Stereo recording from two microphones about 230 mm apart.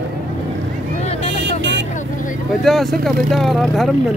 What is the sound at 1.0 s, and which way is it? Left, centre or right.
Vehicle, left.